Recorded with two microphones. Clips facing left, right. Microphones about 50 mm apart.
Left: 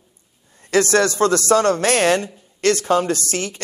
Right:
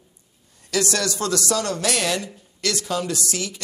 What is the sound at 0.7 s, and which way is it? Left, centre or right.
A woman's voice, left.